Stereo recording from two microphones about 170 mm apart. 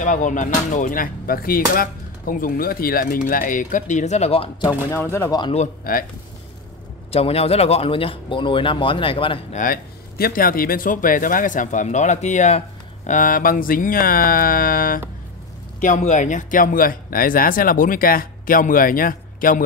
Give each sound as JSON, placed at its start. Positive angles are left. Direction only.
{"t": 0.0, "sound": "speech", "side_deg": 50}
{"t": 5.1, "sound": "a man's voice", "side_deg": 15}
{"t": 5.4, "sound": "speech", "side_deg": 35}
{"t": 7.1, "sound": "speech", "side_deg": 35}
{"t": 9.6, "sound": "speech", "side_deg": 60}
{"t": 15.8, "sound": "speech", "side_deg": 45}